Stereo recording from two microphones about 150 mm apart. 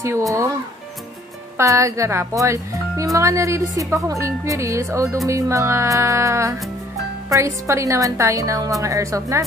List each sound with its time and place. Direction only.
0.0 s speech: 20° right (ahead or behind)
1.6 s speech: 20° right (ahead or behind)